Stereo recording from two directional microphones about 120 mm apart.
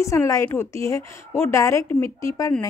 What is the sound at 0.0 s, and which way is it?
Speech, 25° left (ahead or behind).